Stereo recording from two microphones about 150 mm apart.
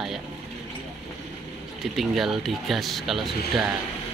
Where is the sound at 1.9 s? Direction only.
Centre (ahead or behind).